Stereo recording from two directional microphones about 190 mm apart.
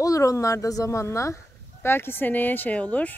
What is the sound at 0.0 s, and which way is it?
Speech, 15° left (ahead or behind).